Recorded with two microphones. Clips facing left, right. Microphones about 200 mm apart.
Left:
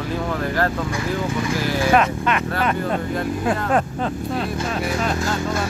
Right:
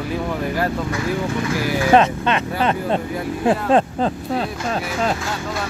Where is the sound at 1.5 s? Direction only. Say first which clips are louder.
Right 1 dB; 15° right (ahead or behind).